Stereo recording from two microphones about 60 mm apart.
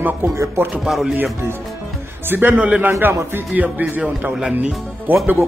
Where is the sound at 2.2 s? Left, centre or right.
Right.